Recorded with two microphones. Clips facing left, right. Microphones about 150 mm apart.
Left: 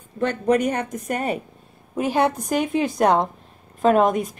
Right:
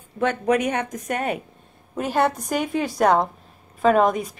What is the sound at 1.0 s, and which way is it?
A woman's voice, centre (ahead or behind).